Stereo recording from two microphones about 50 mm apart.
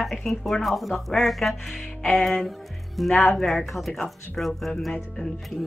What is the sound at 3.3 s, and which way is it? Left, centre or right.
Speech, centre.